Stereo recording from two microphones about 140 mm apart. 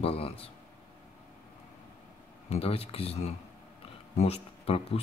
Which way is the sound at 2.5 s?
45° left (ahead or behind).